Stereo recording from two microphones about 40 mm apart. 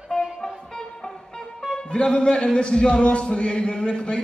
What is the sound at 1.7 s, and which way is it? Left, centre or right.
Speech, left.